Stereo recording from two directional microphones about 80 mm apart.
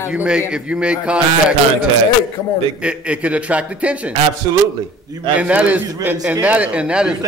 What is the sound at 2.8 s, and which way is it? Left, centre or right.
A man's voice, centre.